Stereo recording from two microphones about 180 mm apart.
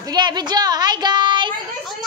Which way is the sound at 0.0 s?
25° right (ahead or behind).